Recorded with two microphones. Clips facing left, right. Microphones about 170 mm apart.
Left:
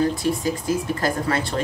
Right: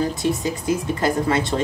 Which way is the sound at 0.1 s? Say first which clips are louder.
Even; 20° right (ahead or behind).